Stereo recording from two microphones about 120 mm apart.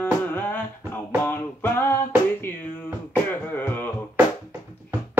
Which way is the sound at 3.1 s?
15° left (ahead or behind).